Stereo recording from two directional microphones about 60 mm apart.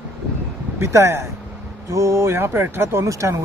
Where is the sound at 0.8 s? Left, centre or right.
Right.